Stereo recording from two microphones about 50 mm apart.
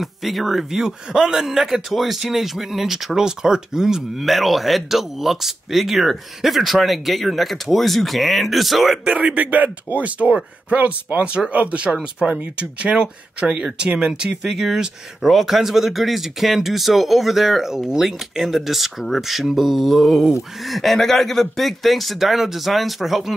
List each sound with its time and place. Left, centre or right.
0.0 s a man's voice: centre
9.0 s a man's voice: right; by 23.3 s centre